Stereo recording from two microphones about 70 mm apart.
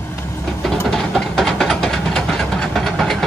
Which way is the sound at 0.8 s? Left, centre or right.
Centre.